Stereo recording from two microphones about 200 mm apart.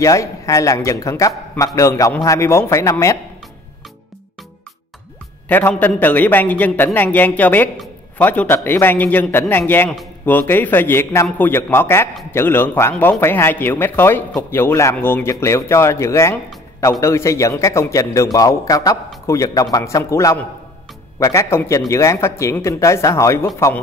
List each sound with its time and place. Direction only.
0.0 s a man's voice: 15° left (ahead or behind)
5.5 s a man's voice: 10° left (ahead or behind)